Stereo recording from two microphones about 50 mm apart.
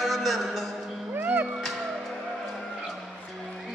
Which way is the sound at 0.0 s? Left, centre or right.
Centre.